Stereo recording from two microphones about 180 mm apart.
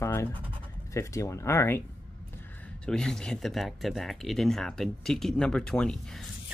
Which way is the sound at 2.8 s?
5° left (ahead or behind).